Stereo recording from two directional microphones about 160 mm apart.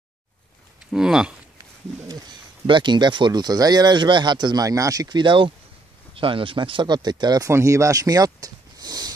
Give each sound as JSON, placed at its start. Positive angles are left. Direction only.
{"t": 0.9, "sound": "speech", "side_deg": -5}
{"t": 2.0, "sound": "speech", "side_deg": -30}